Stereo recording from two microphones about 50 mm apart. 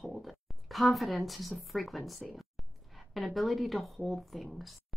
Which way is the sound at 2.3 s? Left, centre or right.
Centre.